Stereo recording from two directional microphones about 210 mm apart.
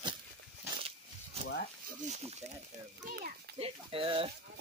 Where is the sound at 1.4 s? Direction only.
30° right (ahead or behind).